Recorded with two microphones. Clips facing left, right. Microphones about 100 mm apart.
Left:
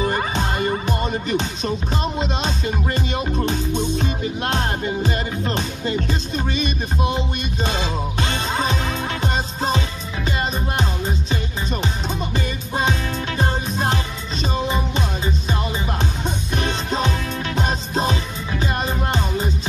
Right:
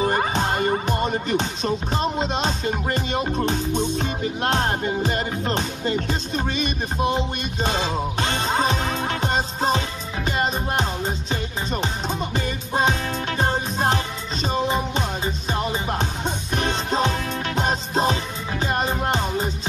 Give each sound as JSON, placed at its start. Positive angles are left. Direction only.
{"t": 0.0, "sound": "music", "side_deg": -35}
{"t": 1.0, "sound": "music", "side_deg": -25}
{"t": 2.3, "sound": "music", "side_deg": -35}
{"t": 5.9, "sound": "music", "side_deg": -25}
{"t": 7.0, "sound": "music", "side_deg": -40}
{"t": 8.5, "sound": "music", "side_deg": -25}
{"t": 16.0, "sound": "music", "side_deg": -25}